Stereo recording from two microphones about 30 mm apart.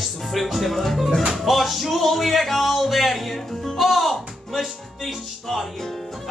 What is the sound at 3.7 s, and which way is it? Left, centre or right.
Music, centre.